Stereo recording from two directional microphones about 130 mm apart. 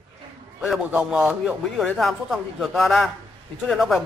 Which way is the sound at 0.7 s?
5° right (ahead or behind).